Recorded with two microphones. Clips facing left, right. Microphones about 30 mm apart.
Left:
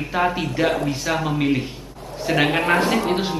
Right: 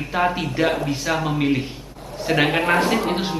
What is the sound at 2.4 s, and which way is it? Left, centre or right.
Speech, right.